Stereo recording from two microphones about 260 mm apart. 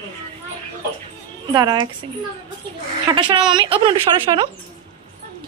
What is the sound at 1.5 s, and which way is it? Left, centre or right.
Speech, centre.